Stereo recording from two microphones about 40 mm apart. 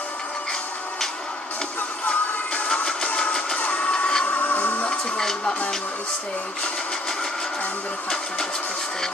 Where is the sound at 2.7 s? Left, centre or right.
Left.